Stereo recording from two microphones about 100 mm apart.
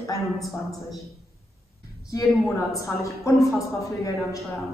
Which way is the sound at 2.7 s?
35° left (ahead or behind).